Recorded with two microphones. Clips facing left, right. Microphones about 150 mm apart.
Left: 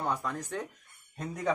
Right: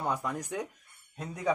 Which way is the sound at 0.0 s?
10° right (ahead or behind).